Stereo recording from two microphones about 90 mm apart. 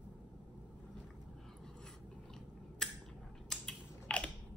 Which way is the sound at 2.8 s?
5° left (ahead or behind).